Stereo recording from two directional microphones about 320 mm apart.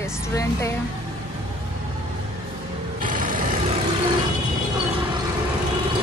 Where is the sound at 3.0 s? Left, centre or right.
Right.